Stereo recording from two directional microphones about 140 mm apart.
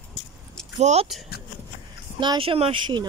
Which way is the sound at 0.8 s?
50° right (ahead or behind).